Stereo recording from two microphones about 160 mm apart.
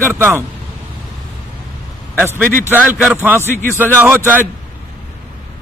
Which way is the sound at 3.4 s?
15° left (ahead or behind).